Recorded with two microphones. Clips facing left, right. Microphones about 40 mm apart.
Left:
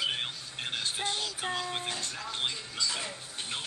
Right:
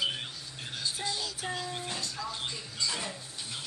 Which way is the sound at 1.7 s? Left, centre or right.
Left.